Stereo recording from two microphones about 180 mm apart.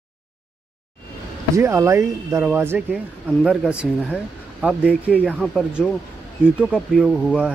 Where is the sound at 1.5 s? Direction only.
15° right (ahead or behind).